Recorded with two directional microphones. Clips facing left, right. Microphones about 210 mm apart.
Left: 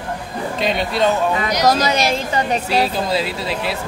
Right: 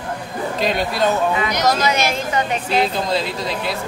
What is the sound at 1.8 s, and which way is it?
Speech, 35° left (ahead or behind).